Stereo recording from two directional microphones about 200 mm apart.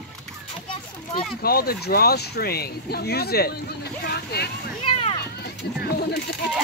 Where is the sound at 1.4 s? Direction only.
50° left (ahead or behind).